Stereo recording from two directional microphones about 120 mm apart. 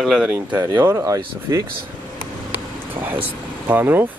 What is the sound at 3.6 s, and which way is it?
Speech, 15° right (ahead or behind).